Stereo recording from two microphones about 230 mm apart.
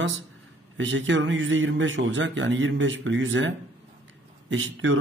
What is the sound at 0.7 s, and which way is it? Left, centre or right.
Speech, right.